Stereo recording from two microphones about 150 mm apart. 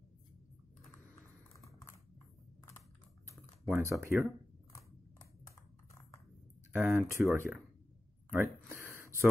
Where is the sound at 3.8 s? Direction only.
20° right (ahead or behind).